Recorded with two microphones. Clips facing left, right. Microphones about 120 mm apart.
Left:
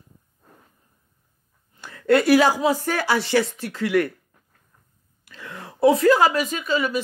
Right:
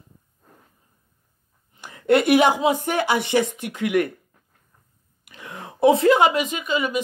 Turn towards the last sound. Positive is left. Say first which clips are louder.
# left 1 dB
turn(degrees=-15)  # may be behind; listen again after turning